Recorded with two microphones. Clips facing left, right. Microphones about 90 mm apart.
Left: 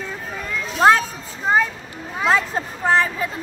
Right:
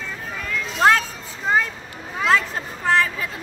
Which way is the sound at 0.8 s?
15° left (ahead or behind).